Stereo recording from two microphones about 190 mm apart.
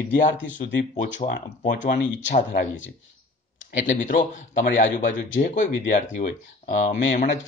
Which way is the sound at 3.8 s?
45° left (ahead or behind).